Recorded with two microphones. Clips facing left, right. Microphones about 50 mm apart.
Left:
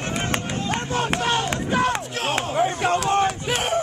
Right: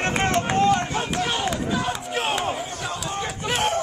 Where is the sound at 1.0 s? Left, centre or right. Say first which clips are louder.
Left 2 dB; left.